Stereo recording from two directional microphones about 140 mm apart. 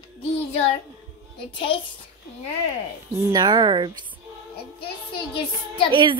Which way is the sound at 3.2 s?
20° right (ahead or behind).